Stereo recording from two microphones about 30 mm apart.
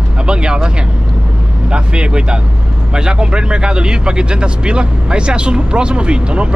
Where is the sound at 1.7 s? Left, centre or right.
Right.